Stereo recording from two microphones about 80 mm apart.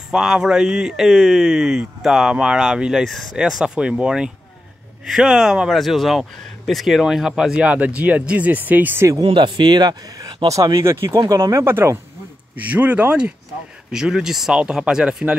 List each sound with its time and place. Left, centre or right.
0.1 s speech: centre; by 9.0 s right
9.3 s speech: right
11.1 s speech: right
11.6 s speech: right
12.5 s speech: centre